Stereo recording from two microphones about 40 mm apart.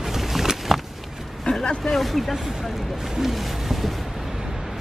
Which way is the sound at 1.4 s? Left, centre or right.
Left.